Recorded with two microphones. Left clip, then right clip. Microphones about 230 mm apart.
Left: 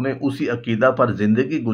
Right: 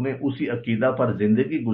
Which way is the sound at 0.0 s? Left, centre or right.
Left.